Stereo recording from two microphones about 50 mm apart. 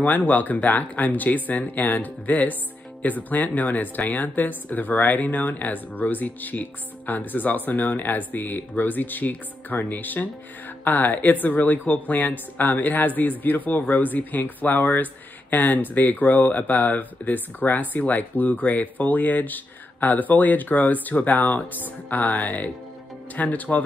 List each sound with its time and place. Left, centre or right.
0.0 s speech: left